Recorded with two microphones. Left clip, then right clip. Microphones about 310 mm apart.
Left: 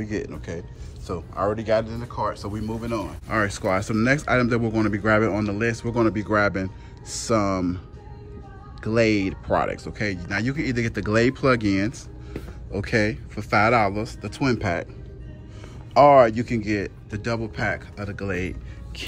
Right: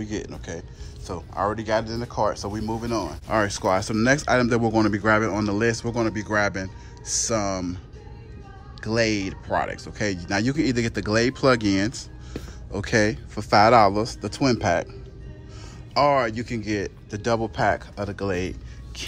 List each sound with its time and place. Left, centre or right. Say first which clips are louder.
0.0 s speech: left 2 dB; centre
8.8 s speech: left 2 dB; centre
15.9 s speech: left 6 dB; centre